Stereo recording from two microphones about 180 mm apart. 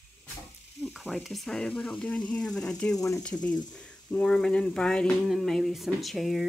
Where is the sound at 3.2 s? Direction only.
5° left (ahead or behind).